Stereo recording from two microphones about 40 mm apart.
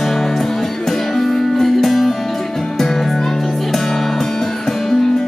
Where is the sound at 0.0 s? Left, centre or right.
Centre.